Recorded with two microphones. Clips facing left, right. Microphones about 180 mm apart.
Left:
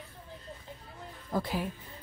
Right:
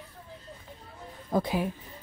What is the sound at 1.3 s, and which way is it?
Speech, 20° right (ahead or behind).